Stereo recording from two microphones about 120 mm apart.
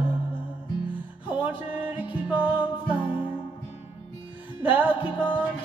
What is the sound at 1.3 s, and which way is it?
Music, 15° right (ahead or behind).